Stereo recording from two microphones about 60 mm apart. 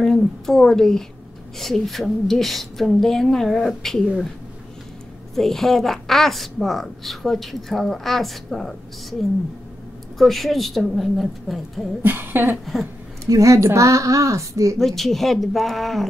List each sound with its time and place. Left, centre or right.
0.0 s a woman's voice: centre
5.3 s a woman's voice: centre
10.1 s a woman's voice: centre
12.0 s a sound: right
13.2 s a woman's voice: right
14.8 s a woman's voice: centre